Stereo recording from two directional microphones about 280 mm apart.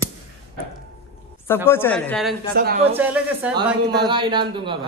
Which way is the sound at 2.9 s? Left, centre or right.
Centre.